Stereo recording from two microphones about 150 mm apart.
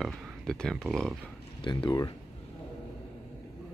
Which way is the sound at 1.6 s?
30° left (ahead or behind).